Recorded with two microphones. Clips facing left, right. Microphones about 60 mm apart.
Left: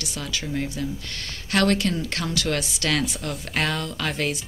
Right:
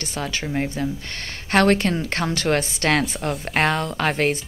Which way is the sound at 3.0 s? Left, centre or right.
Right.